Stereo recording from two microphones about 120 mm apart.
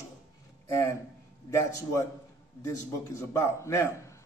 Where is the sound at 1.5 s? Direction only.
25° left (ahead or behind).